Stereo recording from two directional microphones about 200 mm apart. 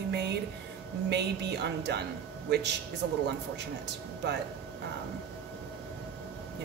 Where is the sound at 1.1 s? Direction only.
60° right (ahead or behind).